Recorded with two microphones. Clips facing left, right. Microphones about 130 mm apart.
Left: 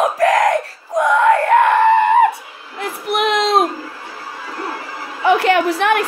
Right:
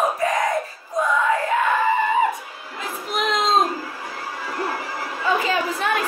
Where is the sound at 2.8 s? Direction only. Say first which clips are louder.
Left 6 dB; 70° left (ahead or behind).